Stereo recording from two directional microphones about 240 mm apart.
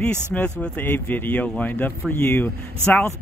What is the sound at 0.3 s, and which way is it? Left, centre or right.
Speech, centre.